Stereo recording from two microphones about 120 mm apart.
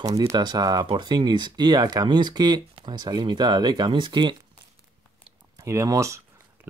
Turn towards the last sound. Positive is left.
turn(degrees=-25)  # may be behind; listen again after turning